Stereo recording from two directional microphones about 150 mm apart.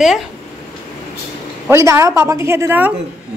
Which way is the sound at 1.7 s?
20° right (ahead or behind).